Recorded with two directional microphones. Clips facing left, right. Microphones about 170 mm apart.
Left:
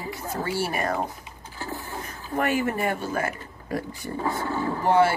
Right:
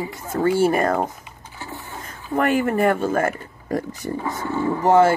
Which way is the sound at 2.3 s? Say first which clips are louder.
Right 5 dB; 50° right (ahead or behind).